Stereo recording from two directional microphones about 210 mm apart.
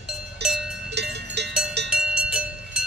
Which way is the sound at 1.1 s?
55° right (ahead or behind).